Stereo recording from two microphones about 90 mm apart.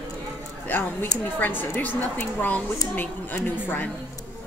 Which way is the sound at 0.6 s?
20° left (ahead or behind).